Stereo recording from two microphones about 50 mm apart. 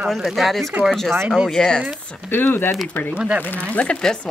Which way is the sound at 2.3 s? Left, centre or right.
Left.